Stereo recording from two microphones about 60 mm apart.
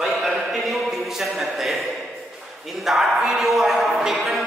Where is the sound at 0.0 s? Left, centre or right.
Centre.